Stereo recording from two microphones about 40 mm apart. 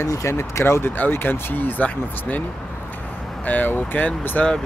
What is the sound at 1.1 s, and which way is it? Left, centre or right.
Speech, left.